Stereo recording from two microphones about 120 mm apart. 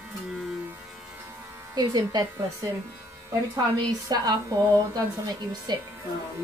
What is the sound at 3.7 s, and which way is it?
A woman's voice, 35° right (ahead or behind).